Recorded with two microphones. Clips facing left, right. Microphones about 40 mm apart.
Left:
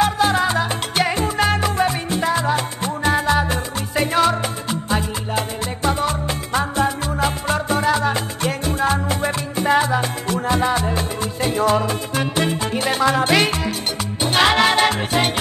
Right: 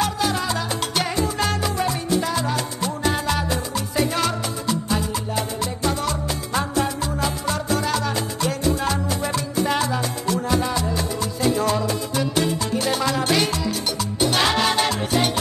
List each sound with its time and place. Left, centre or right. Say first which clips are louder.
0.0 s salsa music: left 6 dB; left
5.9 s music: left 5 dB; left